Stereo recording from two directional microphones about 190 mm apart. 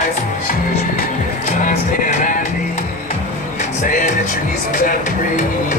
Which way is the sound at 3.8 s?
40° left (ahead or behind).